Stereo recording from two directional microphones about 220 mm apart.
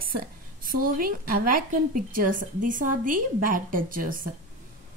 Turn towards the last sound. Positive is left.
turn(degrees=-40)  # may be behind; listen again after turning